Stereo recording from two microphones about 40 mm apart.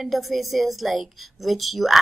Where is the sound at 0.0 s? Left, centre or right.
Centre.